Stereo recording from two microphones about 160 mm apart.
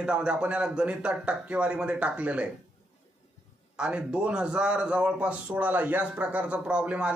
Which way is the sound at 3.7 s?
5° right (ahead or behind).